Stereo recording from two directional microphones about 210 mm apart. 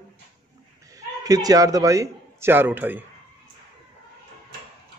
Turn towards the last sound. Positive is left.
turn(degrees=-10)  # may be behind; listen again after turning